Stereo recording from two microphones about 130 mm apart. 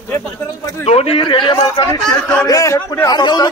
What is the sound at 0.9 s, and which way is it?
A man's voice, 50° left (ahead or behind).